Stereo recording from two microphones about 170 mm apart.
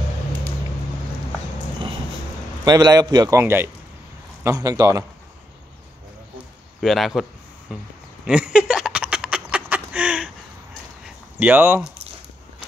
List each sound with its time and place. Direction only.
2.6 s a man's voice: 25° right (ahead or behind)
6.8 s a man's voice: centre (ahead or behind)
8.3 s a sound: 5° right (ahead or behind)
11.3 s speech: 10° right (ahead or behind)